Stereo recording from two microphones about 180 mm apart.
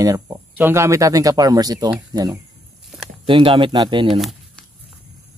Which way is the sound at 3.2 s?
30° right (ahead or behind).